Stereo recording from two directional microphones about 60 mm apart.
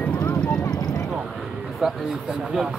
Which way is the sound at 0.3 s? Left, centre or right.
Centre.